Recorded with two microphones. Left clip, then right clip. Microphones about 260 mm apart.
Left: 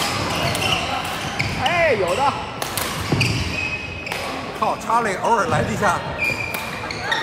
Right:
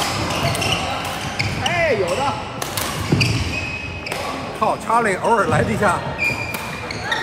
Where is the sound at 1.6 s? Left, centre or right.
Left.